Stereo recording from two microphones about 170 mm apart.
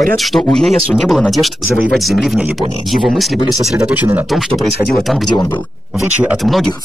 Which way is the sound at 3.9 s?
10° right (ahead or behind).